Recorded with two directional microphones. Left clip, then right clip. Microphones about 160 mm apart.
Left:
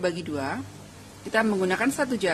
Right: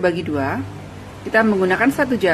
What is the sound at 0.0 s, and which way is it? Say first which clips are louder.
Speech: right 9 dB; 15° left (ahead or behind).